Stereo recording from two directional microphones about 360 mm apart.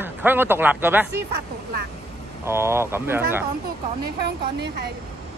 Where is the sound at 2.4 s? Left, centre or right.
Centre.